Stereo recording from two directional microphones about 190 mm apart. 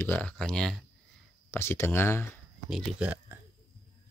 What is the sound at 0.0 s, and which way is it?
Speech, 10° left (ahead or behind).